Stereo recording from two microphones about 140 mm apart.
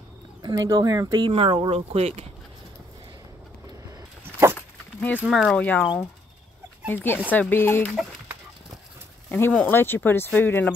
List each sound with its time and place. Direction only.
0.4 s speech: 25° right (ahead or behind); by 2.2 s 45° right (ahead or behind)
4.2 s dog: 15° right (ahead or behind)
5.3 s speech: 5° left (ahead or behind)
6.9 s speech: 15° left (ahead or behind)
9.3 s speech: 10° left (ahead or behind)